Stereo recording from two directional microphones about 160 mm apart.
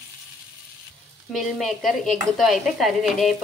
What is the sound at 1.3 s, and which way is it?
Speech, centre (ahead or behind).